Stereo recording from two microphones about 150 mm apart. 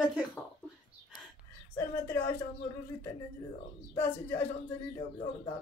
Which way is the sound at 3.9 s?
15° left (ahead or behind).